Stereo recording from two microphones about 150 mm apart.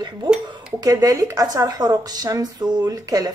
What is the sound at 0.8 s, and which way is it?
Speech, 25° right (ahead or behind).